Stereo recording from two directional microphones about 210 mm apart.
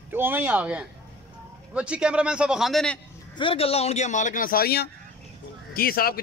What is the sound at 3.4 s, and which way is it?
A man's voice, 25° left (ahead or behind).